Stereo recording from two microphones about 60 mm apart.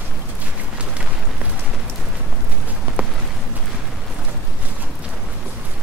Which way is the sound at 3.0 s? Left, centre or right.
Right.